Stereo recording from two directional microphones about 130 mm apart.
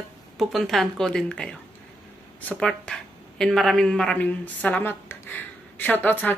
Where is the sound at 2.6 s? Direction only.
5° left (ahead or behind).